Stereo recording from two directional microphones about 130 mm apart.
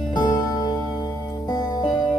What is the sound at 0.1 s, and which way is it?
Music, 35° left (ahead or behind).